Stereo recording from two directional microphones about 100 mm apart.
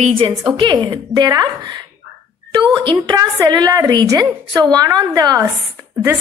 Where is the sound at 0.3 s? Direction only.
40° right (ahead or behind).